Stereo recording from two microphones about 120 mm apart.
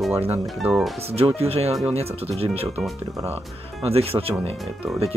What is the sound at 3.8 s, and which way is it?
Speech, 55° right (ahead or behind).